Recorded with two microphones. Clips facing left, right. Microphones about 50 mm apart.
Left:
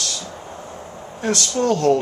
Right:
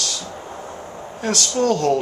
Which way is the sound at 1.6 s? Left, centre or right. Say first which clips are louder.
Left 1 dB; centre.